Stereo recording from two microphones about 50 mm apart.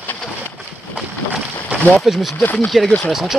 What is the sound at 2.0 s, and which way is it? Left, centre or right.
Speech, centre.